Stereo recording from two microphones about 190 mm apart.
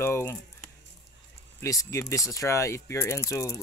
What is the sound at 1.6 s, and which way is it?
Speech, 15° left (ahead or behind).